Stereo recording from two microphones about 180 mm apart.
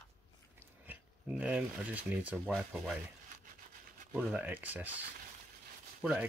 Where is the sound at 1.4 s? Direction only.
10° right (ahead or behind).